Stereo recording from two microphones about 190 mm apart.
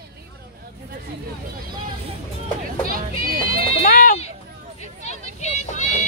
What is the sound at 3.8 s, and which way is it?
Sheep, 45° left (ahead or behind).